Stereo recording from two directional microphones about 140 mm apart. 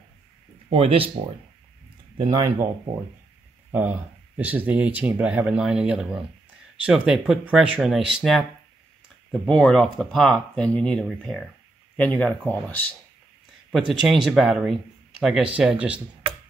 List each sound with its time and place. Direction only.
0.7 s speech: 40° right (ahead or behind)
2.1 s speech: 25° right (ahead or behind)
3.7 s speech: 10° right (ahead or behind); by 12.9 s 10° left (ahead or behind)
13.7 s speech: centre (ahead or behind)